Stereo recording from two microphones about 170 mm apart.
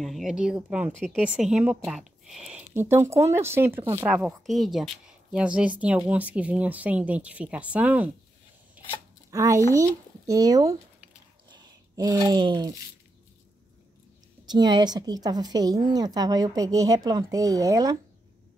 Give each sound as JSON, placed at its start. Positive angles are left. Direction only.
{"t": 0.0, "sound": "speech", "side_deg": 0}
{"t": 0.9, "sound": "speech", "side_deg": 5}
{"t": 1.2, "sound": "speech", "side_deg": -5}
{"t": 2.7, "sound": "speech", "side_deg": -15}
{"t": 8.8, "sound": "a sound", "side_deg": -10}
{"t": 9.3, "sound": "speech", "side_deg": -20}
{"t": 14.4, "sound": "a woman's voice", "side_deg": -25}